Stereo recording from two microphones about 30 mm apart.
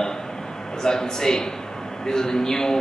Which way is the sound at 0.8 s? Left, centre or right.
Left.